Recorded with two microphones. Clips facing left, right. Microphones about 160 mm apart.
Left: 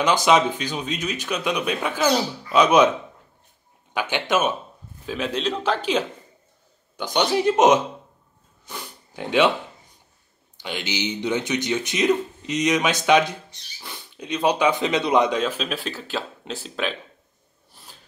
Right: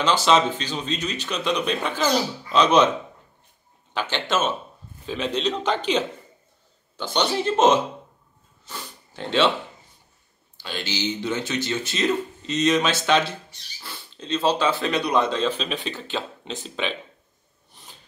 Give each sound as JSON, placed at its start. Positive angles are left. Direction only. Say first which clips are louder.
{"t": 0.0, "sound": "speech", "louder": "left 1 dB", "side_deg": 15}
{"t": 3.9, "sound": "speech", "louder": "left 2 dB", "side_deg": 10}
{"t": 8.6, "sound": "a sound", "louder": "left 1 dB", "side_deg": 15}
{"t": 10.6, "sound": "speech", "louder": "left 1 dB", "side_deg": 20}